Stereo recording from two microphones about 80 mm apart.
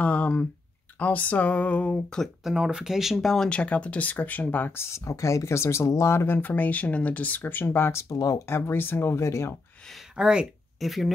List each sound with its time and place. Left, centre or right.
0.0 s speech: centre
0.9 s a sound: centre
2.4 s speech: centre
3.4 s speech: centre
4.8 s speech: left
8.1 s speech: left
8.5 s speech: left
10.1 s speech: centre
10.8 s speech: centre